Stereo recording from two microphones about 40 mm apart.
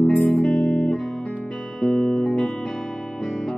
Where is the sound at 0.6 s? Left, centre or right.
Centre.